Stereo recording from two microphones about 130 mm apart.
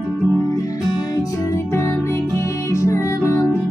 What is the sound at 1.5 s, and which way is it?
Music, 20° left (ahead or behind).